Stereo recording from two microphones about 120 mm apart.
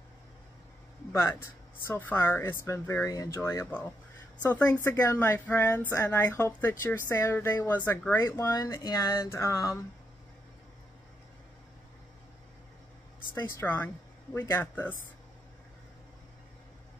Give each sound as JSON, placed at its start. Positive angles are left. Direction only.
{"t": 1.2, "sound": "a woman's voice", "side_deg": 20}
{"t": 4.8, "sound": "a woman's voice", "side_deg": 25}
{"t": 13.4, "sound": "a woman's voice", "side_deg": 25}